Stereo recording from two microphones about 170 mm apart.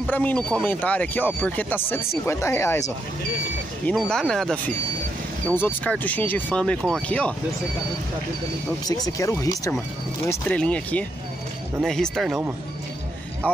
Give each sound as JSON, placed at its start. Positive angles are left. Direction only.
{"t": 0.0, "sound": "speech", "side_deg": 10}
{"t": 3.8, "sound": "speech", "side_deg": 5}
{"t": 8.8, "sound": "speech", "side_deg": 20}